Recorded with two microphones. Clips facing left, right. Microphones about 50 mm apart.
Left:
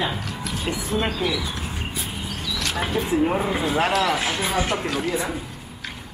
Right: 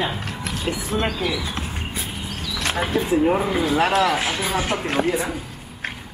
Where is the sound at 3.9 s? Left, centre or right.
Right.